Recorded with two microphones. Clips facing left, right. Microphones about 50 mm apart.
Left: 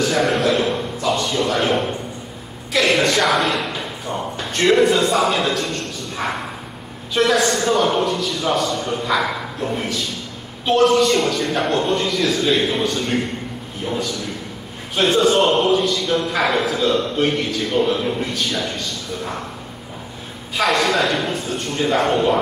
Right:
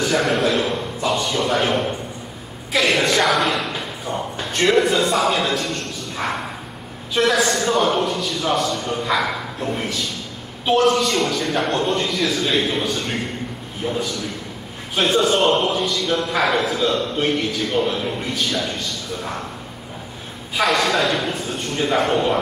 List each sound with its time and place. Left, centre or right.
0.1 s a man's voice: centre
1.0 s speech: centre
2.8 s a man's voice: centre
20.5 s a man's voice: centre